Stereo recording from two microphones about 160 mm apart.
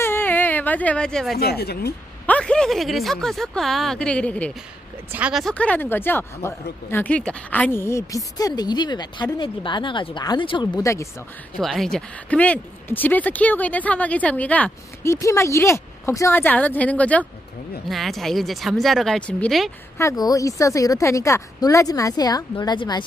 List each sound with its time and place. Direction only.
0.0 s whimper: 15° left (ahead or behind)
1.4 s speech: 85° left
2.2 s speech: 5° left (ahead or behind)
5.1 s a woman's voice: 5° right (ahead or behind); by 11.1 s 20° left (ahead or behind)
11.5 s speech: centre (ahead or behind)
20.0 s a woman's voice: 20° left (ahead or behind)